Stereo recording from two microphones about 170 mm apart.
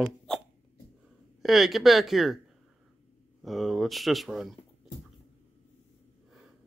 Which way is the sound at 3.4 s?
Centre (ahead or behind).